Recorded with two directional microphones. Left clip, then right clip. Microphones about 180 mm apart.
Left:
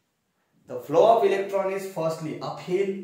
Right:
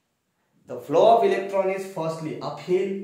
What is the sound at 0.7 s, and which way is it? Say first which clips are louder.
A man's voice: right 1 dB; 30° right (ahead or behind).